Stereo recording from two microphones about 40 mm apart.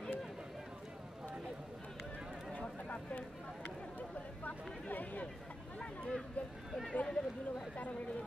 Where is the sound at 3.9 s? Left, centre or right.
Left.